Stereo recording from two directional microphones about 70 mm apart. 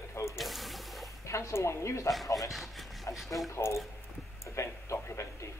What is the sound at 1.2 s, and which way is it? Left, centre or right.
Speech, left.